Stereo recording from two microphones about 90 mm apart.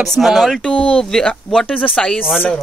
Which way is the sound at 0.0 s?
Centre (ahead or behind).